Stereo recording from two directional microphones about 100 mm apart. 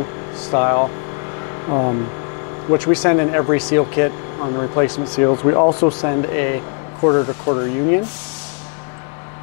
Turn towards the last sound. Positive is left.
turn(degrees=25)  # may be behind; listen again after turning